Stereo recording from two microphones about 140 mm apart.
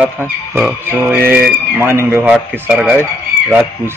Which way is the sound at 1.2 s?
15° right (ahead or behind).